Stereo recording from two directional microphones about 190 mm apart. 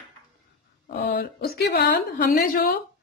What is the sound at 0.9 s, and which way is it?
A woman's voice, 55° left (ahead or behind).